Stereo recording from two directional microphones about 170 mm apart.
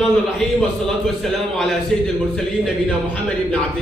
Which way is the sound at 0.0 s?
Centre (ahead or behind).